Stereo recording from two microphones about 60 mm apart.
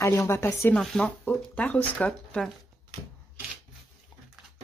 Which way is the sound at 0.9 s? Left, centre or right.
Centre.